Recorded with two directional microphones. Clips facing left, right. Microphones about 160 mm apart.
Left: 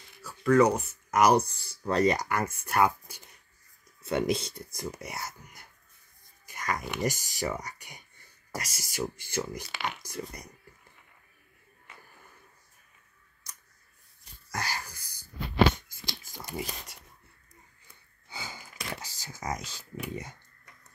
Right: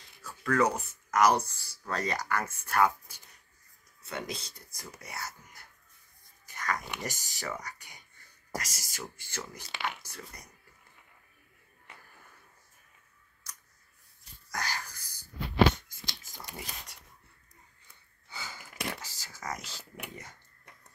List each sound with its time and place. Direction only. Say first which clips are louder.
0.2 s speech: left 6 dB; 10° left (ahead or behind)
4.0 s speech: left 11 dB; 25° left (ahead or behind)
14.5 s a sound: left 2 dB; 5° left (ahead or behind)
16.5 s speech: left 9 dB; 5° left (ahead or behind)
18.3 s a sound: left 2 dB; 15° left (ahead or behind)
18.9 s speech: left 3 dB; 15° left (ahead or behind)